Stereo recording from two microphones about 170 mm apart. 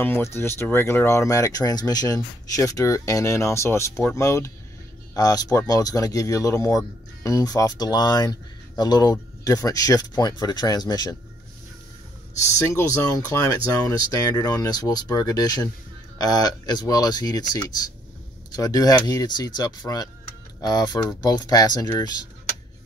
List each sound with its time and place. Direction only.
0.0 s speech: 15° left (ahead or behind)
12.7 s speech: 20° left (ahead or behind)